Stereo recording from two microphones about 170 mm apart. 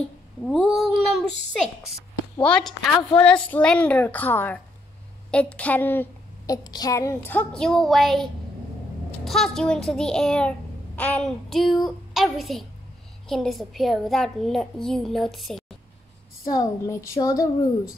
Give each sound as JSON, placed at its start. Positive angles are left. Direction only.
{"t": 0.5, "sound": "a child's voice", "side_deg": 0}
{"t": 16.4, "sound": "speech", "side_deg": 20}